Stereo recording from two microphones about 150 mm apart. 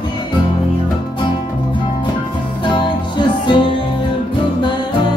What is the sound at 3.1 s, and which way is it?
Music, 30° left (ahead or behind).